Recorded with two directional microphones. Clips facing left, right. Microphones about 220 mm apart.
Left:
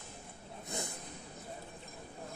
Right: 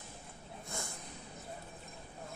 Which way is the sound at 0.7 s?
20° left (ahead or behind).